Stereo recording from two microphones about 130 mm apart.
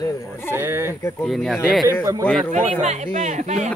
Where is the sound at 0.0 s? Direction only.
25° left (ahead or behind).